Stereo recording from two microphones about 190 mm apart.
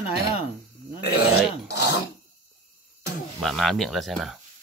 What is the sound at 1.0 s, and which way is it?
Speech, 55° left (ahead or behind).